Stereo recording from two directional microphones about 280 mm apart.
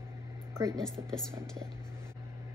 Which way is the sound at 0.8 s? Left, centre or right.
Centre.